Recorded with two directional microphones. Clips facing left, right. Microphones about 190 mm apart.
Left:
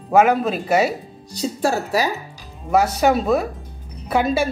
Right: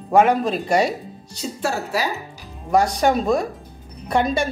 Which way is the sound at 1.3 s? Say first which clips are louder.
Left 4 dB; 40° left (ahead or behind).